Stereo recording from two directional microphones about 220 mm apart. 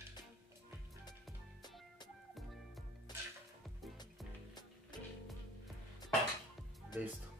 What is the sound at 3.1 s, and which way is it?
Music, 20° left (ahead or behind).